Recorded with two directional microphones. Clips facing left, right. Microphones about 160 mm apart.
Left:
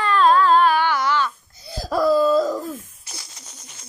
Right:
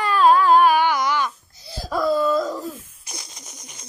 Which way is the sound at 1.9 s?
35° left (ahead or behind).